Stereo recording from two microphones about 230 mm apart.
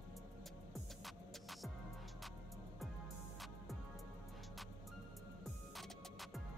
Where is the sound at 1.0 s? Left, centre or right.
Centre.